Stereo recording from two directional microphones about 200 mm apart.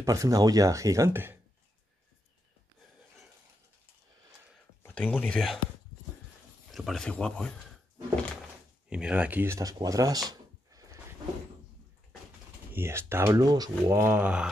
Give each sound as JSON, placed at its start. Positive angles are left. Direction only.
{"t": 0.0, "sound": "speech", "side_deg": -15}
{"t": 4.8, "sound": "speech", "side_deg": 10}
{"t": 6.7, "sound": "speech", "side_deg": 0}
{"t": 8.8, "sound": "speech", "side_deg": -5}
{"t": 10.3, "sound": "a sound", "side_deg": -15}
{"t": 12.7, "sound": "speech", "side_deg": -10}